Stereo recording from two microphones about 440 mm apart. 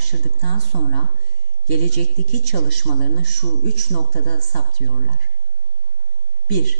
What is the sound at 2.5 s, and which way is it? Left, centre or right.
A woman's voice, right.